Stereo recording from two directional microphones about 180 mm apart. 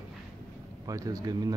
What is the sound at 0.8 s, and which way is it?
Speech, 20° right (ahead or behind).